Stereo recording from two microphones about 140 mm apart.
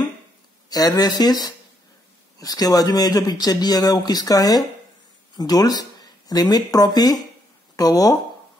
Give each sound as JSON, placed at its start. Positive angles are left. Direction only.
{"t": 0.7, "sound": "speech", "side_deg": 25}